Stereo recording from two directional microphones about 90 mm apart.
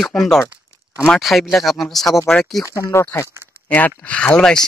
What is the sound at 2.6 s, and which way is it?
Speech, 35° left (ahead or behind).